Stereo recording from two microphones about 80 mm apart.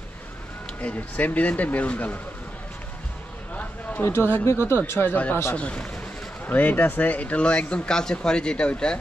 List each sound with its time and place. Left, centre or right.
0.7 s speech: centre
4.0 s speech: left; by 8.9 s centre